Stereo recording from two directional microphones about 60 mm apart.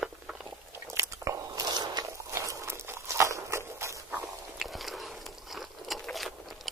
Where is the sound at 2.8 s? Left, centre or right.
Right.